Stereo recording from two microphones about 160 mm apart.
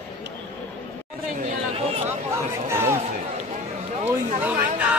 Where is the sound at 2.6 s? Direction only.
15° right (ahead or behind).